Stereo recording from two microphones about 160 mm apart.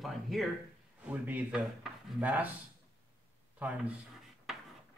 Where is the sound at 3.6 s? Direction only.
10° right (ahead or behind).